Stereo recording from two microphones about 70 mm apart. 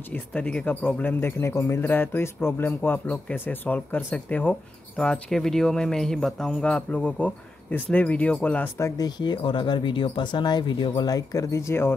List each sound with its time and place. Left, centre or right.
0.1 s speech: centre; by 1.8 s left
1.8 s speech: left
4.9 s speech: centre
8.9 s speech: left